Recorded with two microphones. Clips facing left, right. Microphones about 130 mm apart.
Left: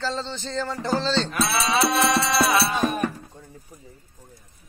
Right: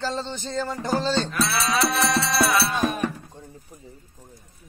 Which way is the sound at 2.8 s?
Centre (ahead or behind).